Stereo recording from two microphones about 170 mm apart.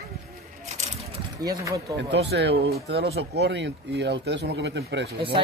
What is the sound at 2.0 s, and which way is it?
Speech, 85° right.